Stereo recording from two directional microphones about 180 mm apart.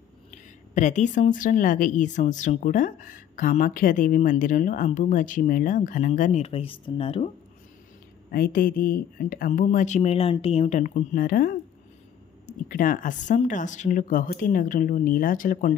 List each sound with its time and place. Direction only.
0.7 s a woman's voice: 40° left (ahead or behind)
8.3 s a woman's voice: 55° left (ahead or behind)